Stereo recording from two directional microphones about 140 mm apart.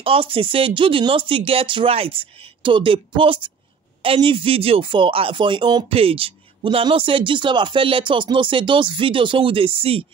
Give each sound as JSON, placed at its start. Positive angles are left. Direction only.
{"t": 0.0, "sound": "speech", "side_deg": -40}